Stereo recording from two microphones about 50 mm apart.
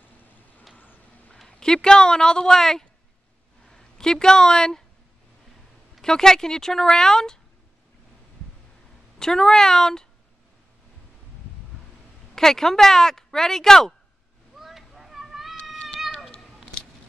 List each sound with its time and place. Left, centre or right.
0.2 s vehicle: left
1.4 s speech: centre
5.9 s speech: centre
9.2 s speech: centre
12.4 s speech: centre
14.6 s a sound: centre
16.0 s cat: centre